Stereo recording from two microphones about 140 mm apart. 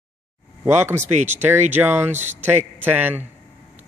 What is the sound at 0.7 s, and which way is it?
A man's voice, 15° right (ahead or behind).